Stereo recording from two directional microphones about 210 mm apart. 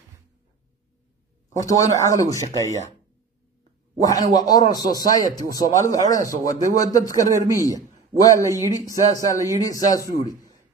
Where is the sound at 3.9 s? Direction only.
15° left (ahead or behind).